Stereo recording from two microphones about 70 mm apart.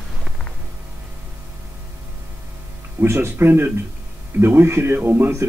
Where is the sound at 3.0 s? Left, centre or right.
Right.